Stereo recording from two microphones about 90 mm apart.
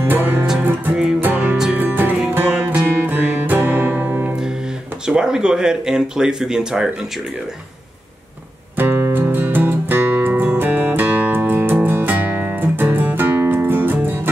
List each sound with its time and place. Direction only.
0.0 s music: 20° right (ahead or behind)
5.0 s speech: 10° right (ahead or behind)
8.7 s music: 25° right (ahead or behind)